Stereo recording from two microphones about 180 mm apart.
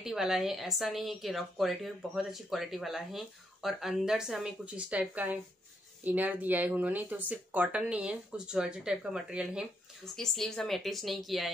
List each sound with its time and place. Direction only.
0.0 s a woman's voice: centre (ahead or behind)